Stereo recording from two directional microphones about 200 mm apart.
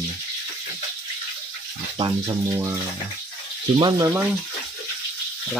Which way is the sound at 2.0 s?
20° right (ahead or behind).